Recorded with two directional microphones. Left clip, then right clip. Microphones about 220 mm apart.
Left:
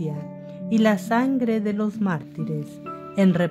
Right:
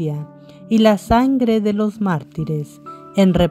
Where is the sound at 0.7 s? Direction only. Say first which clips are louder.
Right 7 dB; 25° right (ahead or behind).